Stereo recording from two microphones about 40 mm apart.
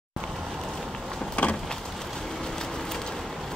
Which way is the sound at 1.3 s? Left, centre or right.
Left.